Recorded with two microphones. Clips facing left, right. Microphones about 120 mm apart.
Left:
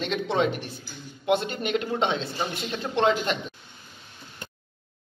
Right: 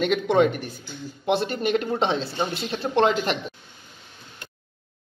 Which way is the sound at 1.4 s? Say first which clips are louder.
Right 4 dB; 40° right (ahead or behind).